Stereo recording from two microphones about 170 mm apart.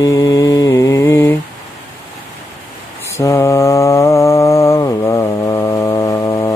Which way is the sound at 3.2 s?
15° left (ahead or behind).